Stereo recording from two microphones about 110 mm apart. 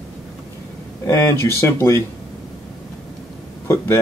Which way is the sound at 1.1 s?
25° left (ahead or behind).